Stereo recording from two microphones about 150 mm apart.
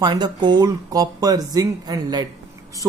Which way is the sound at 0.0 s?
30° right (ahead or behind).